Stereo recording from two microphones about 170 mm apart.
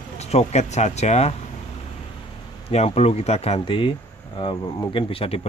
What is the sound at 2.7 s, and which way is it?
Speech, 40° left (ahead or behind).